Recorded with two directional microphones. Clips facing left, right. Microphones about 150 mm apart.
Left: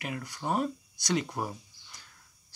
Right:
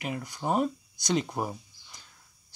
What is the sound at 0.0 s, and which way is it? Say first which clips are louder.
Speech: right 3 dB; 20° right (ahead or behind).